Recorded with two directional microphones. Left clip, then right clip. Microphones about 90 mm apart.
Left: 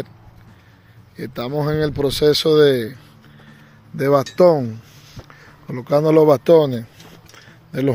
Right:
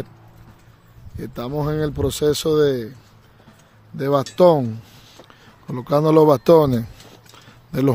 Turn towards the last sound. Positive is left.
turn(degrees=-55)  # may be behind; listen again after turning